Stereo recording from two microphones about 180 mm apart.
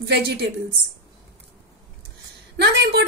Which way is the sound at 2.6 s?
70° right (ahead or behind).